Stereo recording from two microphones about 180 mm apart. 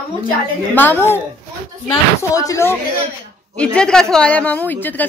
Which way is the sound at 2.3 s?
20° left (ahead or behind).